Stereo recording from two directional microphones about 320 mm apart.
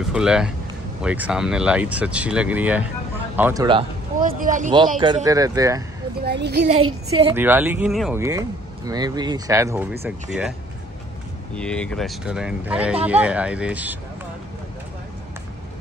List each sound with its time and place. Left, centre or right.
0.1 s speech: centre
4.2 s speech: right
6.1 s a child's voice: right
7.2 s speech: centre
11.5 s speech: centre